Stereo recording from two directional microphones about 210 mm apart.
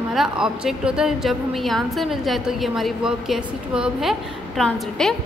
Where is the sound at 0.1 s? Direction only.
Centre (ahead or behind).